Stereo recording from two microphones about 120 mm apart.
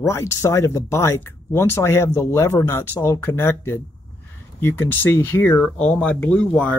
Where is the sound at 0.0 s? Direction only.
25° left (ahead or behind).